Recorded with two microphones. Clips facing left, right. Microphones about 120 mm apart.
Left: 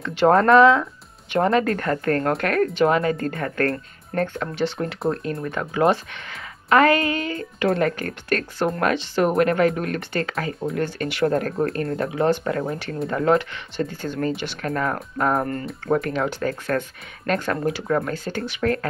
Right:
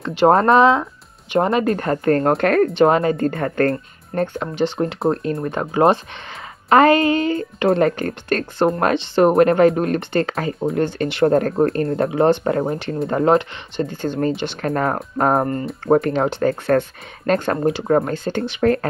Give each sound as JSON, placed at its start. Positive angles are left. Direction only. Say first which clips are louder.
{"t": 0.3, "sound": "speech", "louder": "even", "side_deg": -25}
{"t": 12.7, "sound": "speech", "louder": "right 5 dB", "side_deg": -20}